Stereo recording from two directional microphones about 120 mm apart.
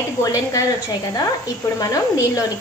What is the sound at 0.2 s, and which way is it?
Speech, 30° left (ahead or behind).